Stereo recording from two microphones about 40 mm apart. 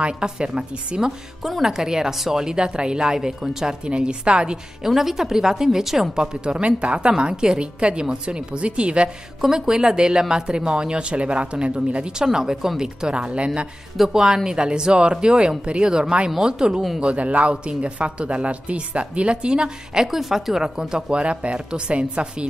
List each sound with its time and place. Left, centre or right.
0.0 s speech: right
1.4 s speech: centre; by 4.6 s right
4.8 s speech: centre
6.1 s speech: right
9.4 s speech: centre
13.9 s speech: centre
17.0 s speech: right; by 21.0 s centre
21.1 s speech: right